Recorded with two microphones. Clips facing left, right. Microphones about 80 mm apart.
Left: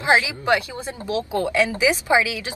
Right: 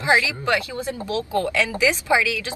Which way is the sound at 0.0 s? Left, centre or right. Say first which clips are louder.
Left 1 dB; left.